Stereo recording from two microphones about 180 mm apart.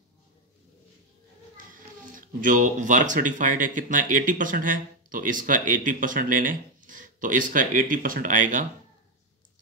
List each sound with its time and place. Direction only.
1.7 s speech: 45° right (ahead or behind)